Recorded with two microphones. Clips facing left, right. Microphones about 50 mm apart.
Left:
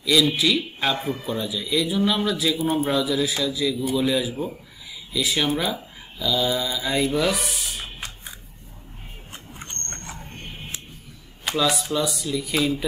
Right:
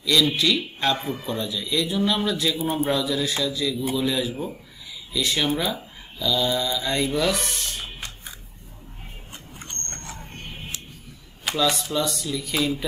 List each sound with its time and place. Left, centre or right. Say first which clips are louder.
0.0 s a man's voice: left 1 dB; centre
9.3 s a sound: left 2 dB; centre
11.4 s a man's voice: left 1 dB; centre